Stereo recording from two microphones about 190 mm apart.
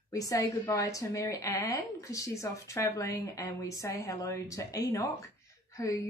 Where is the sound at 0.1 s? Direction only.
20° left (ahead or behind).